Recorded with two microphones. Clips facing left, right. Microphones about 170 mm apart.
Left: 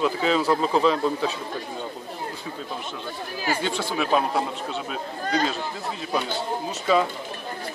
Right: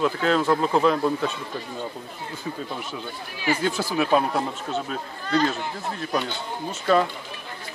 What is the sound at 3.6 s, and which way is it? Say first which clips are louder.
Speech: right 2 dB; 5° right (ahead or behind).